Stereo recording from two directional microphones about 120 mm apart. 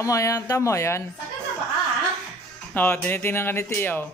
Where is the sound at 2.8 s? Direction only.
15° left (ahead or behind).